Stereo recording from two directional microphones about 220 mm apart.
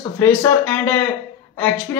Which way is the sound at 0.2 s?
10° left (ahead or behind).